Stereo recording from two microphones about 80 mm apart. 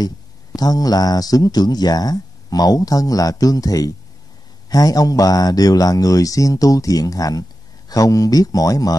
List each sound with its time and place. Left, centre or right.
0.6 s speech: left